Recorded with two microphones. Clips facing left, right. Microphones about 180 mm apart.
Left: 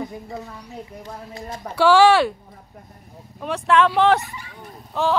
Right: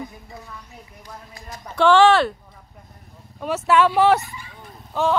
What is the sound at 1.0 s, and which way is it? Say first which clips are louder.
Speech: left 6 dB; 25° left (ahead or behind).